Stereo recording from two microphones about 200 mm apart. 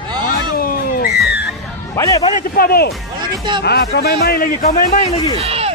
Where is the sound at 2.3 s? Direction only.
50° left (ahead or behind).